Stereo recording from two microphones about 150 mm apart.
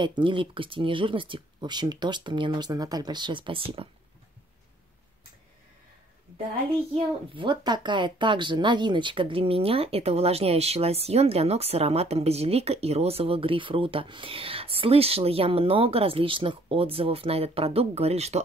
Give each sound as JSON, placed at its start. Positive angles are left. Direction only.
{"t": 0.0, "sound": "speech", "side_deg": -35}
{"t": 7.3, "sound": "speech", "side_deg": -30}